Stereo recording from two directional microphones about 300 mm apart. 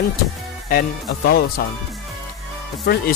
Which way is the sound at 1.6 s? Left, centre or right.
Left.